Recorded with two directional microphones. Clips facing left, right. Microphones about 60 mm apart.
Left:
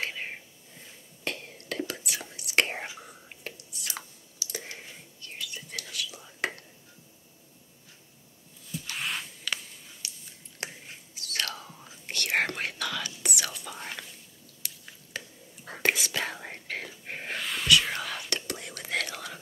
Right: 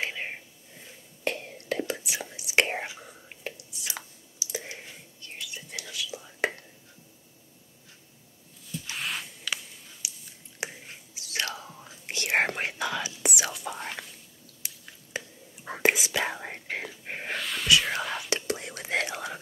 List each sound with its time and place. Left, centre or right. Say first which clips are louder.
0.0 s a sound: right 2 dB; centre
1.2 s whispering: right 4 dB; right
3.8 s chewing: right 1 dB; centre
5.4 s whispering: even; right
8.9 s a sound: even; centre
10.6 s whispering: right 3 dB; centre
15.1 s whispering: right 3 dB; centre
17.4 s whispering: left 2 dB; centre
17.8 s whispering: right 3 dB; centre